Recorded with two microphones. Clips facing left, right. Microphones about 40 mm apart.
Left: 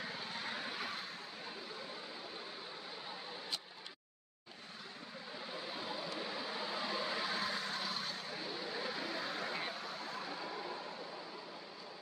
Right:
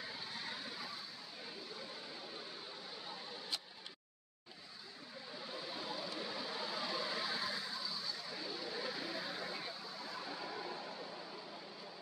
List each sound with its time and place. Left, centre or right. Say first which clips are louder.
0.0 s vehicle: left 3 dB; left
5.6 s vehicle: left 1 dB; left
8.5 s vehicle: left 2 dB; left
10.4 s vehicle: left 1 dB; centre